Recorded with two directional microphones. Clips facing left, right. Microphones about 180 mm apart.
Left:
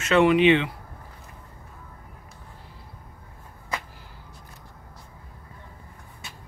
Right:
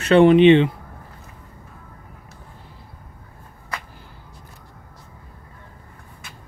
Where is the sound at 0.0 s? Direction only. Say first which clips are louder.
Right 6 dB; 30° right (ahead or behind).